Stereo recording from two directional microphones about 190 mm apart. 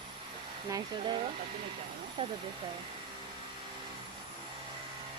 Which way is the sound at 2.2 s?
30° right (ahead or behind).